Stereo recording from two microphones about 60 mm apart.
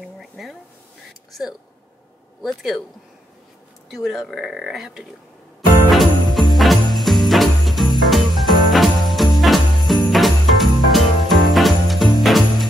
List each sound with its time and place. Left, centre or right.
0.0 s a sound: centre
2.4 s speech: centre
3.9 s speech: centre
5.9 s jingle bell: centre